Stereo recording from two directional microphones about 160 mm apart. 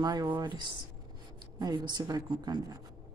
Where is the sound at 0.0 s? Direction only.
25° right (ahead or behind).